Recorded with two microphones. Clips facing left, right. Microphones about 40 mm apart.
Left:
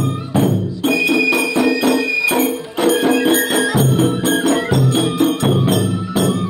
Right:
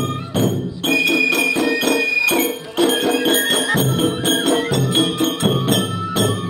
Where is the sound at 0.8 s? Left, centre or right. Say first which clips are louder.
Left 1 dB; right.